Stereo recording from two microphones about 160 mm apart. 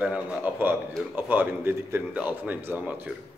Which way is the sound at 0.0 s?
10° right (ahead or behind).